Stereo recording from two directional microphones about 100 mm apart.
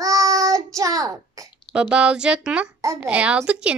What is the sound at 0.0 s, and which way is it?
Child singing, 35° right (ahead or behind).